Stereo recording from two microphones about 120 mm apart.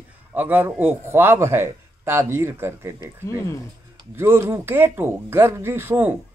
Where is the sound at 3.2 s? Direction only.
25° left (ahead or behind).